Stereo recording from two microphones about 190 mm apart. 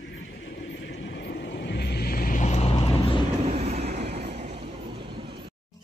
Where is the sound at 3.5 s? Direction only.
35° right (ahead or behind).